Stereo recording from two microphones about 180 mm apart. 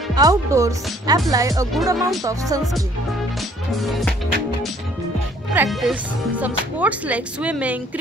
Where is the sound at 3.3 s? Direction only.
Centre (ahead or behind).